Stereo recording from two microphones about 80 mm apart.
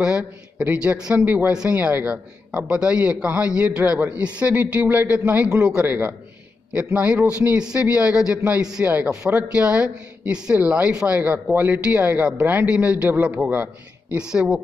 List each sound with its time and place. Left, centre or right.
0.0 s a man's voice: centre
14.1 s a man's voice: centre